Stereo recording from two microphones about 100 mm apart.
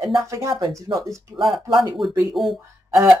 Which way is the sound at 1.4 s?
Centre (ahead or behind).